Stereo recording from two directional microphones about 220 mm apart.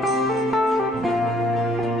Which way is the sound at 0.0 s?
Centre (ahead or behind).